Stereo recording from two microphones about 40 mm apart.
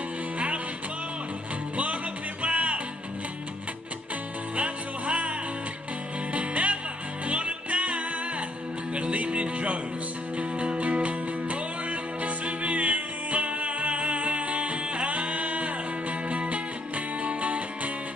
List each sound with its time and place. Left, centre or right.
2.4 s music: right
4.6 s music: right
6.3 s music: right